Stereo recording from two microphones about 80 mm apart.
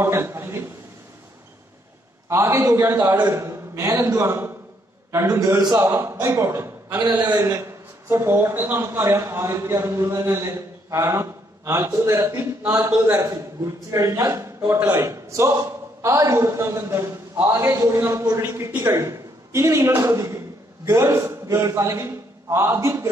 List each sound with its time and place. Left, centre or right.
0.0 s a man's voice: right
2.2 s a man's voice: right
5.8 s speech: right
6.5 s a sound: right
7.2 s a man's voice: right